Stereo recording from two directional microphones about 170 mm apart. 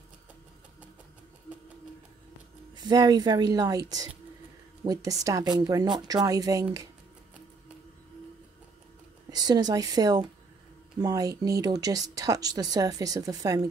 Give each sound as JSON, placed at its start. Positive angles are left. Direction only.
{"t": 2.7, "sound": "speech", "side_deg": -25}
{"t": 9.3, "sound": "speech", "side_deg": -25}